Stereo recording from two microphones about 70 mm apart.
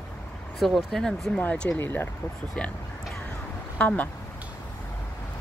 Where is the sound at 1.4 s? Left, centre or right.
Centre.